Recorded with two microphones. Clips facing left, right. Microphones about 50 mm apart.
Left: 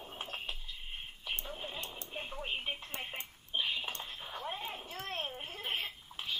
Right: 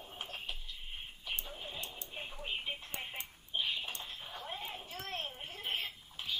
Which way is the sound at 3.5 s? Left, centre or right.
Left.